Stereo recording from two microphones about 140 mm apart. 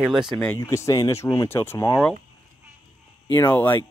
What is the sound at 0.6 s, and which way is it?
Speech, 20° left (ahead or behind).